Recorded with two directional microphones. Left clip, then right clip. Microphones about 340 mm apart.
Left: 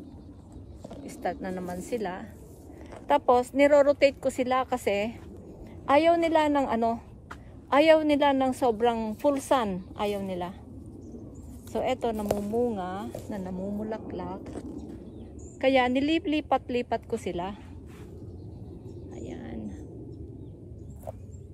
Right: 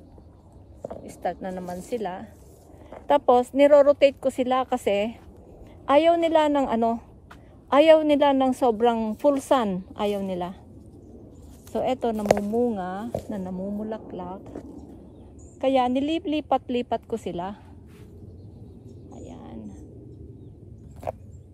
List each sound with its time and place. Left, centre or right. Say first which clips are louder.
1.2 s a woman's voice: right 2 dB; right
11.7 s a woman's voice: right 3 dB; right
15.6 s a woman's voice: right 1 dB; centre
19.1 s a sound: left 2 dB; centre